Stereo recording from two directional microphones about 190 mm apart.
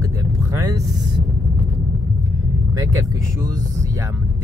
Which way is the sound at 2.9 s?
15° right (ahead or behind).